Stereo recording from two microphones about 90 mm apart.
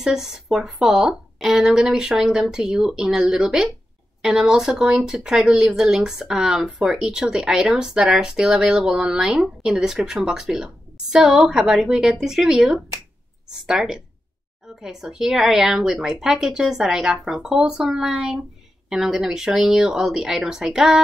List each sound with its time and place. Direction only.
0.0 s a woman's voice: 5° right (ahead or behind)